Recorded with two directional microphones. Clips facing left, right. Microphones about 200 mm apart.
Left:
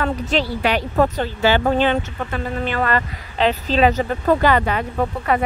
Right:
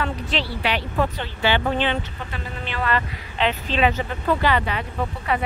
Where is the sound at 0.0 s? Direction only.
45° left (ahead or behind).